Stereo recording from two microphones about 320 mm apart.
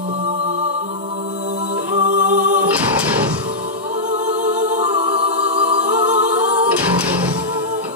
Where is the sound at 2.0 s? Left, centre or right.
Right.